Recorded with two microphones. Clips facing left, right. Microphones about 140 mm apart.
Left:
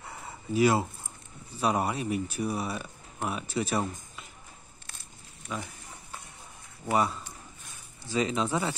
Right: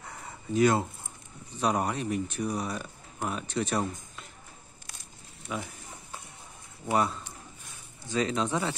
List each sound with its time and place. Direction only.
0.0 s a sound: 5° left (ahead or behind)
1.6 s speech: 5° left (ahead or behind)
5.5 s speech: 5° right (ahead or behind)
6.9 s speech: centre (ahead or behind)